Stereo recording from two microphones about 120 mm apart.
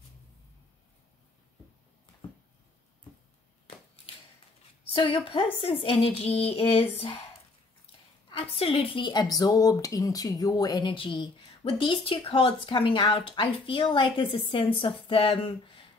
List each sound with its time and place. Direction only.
4.9 s speech: 50° left (ahead or behind)
8.4 s speech: 55° left (ahead or behind)